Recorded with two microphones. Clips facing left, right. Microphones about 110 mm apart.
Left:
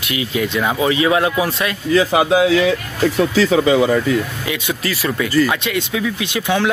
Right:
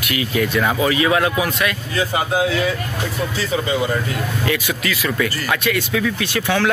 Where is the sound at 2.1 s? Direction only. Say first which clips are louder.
Left 3 dB; 90° left.